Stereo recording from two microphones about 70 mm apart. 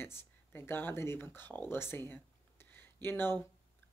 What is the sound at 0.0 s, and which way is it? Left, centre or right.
Speech, left.